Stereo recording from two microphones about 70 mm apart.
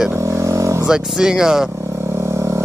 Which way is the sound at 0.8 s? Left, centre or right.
Centre.